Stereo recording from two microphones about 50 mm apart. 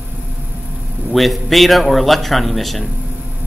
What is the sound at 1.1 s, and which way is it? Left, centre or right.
Speech, centre.